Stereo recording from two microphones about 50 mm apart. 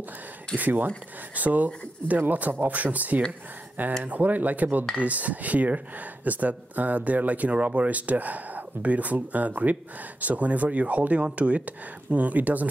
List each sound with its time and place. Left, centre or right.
0.6 s speech: right